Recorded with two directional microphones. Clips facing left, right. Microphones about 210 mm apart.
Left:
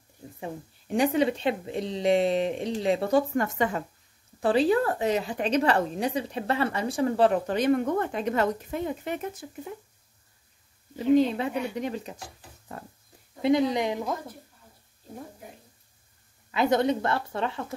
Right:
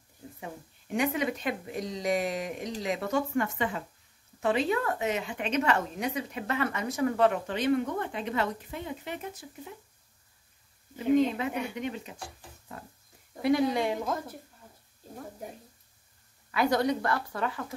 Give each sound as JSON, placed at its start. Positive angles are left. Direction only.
{"t": 0.4, "sound": "a woman's voice", "side_deg": 30}
{"t": 11.1, "sound": "a woman's voice", "side_deg": 35}
{"t": 13.4, "sound": "speech", "side_deg": 20}
{"t": 16.5, "sound": "speech", "side_deg": 20}